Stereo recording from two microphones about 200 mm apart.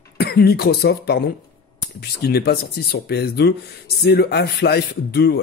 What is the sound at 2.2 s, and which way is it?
Speech, 55° left (ahead or behind).